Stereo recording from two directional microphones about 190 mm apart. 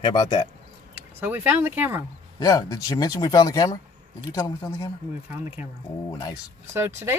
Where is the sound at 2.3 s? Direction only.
20° left (ahead or behind).